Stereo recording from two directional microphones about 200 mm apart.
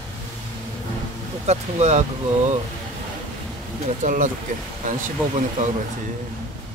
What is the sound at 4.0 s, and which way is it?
Speech, 40° right (ahead or behind).